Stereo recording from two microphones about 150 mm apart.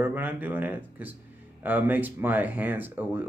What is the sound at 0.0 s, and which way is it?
Speech, 15° right (ahead or behind).